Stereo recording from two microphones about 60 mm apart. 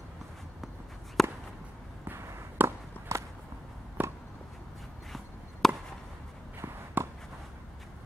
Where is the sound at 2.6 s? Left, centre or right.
Right.